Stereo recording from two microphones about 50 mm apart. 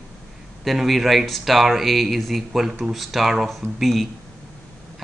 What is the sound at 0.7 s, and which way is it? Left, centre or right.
Speech, centre.